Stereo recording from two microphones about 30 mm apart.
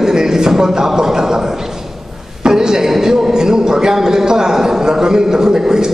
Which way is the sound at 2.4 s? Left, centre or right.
Right.